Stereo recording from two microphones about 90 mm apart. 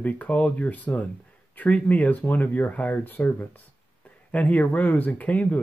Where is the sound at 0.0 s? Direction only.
15° left (ahead or behind).